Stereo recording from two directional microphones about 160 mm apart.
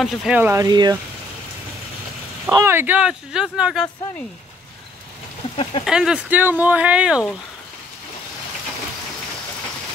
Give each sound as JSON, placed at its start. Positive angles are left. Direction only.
{"t": 0.0, "sound": "speech", "side_deg": 0}
{"t": 0.4, "sound": "speech", "side_deg": -15}
{"t": 2.5, "sound": "speech", "side_deg": -15}
{"t": 5.6, "sound": "speech", "side_deg": 35}
{"t": 5.9, "sound": "speech", "side_deg": -5}